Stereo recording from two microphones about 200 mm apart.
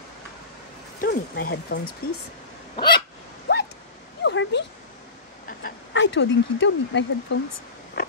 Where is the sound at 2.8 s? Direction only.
20° left (ahead or behind).